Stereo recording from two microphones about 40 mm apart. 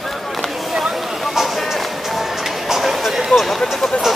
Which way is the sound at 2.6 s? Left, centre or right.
Centre.